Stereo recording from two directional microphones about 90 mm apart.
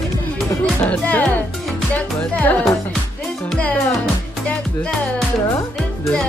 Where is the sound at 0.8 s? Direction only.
15° left (ahead or behind).